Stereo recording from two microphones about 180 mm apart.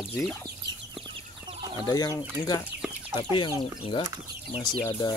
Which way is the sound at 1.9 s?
20° left (ahead or behind).